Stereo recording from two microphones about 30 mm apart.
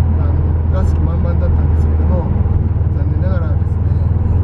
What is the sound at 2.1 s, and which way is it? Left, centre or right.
Vehicle, centre.